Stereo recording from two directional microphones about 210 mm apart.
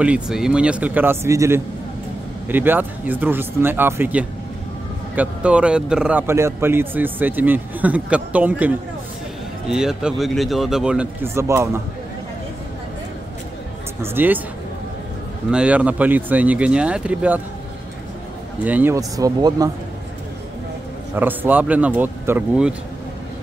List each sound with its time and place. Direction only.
0.0 s a man's voice: 5° right (ahead or behind)
14.0 s a man's voice: 10° right (ahead or behind)
15.5 s a man's voice: 5° right (ahead or behind)
18.6 s a man's voice: 10° right (ahead or behind)
21.1 s a man's voice: 10° right (ahead or behind)